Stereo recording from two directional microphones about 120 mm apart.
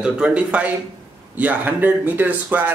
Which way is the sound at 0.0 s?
10° right (ahead or behind).